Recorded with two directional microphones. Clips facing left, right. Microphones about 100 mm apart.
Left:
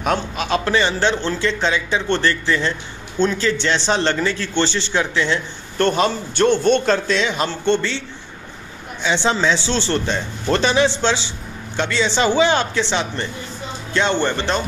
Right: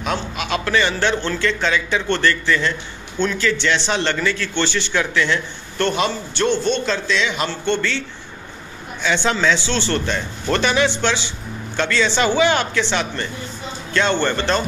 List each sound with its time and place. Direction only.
0.0 s a man's voice: 40° left (ahead or behind); by 5.4 s 25° left (ahead or behind)
5.8 s speech: 40° left (ahead or behind)
9.0 s a man's voice: 25° left (ahead or behind)